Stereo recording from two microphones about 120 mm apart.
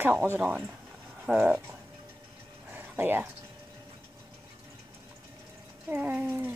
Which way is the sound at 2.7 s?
15° right (ahead or behind).